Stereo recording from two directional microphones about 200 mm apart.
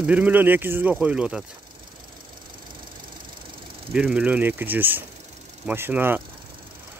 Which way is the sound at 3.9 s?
5° right (ahead or behind).